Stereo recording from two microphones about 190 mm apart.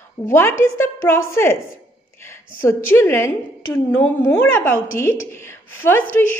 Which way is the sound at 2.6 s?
15° left (ahead or behind).